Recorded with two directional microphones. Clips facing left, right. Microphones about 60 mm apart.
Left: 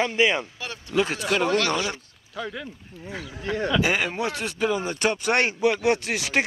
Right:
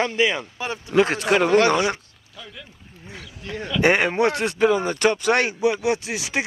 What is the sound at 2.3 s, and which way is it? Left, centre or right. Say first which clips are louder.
Speech: left 9 dB; left.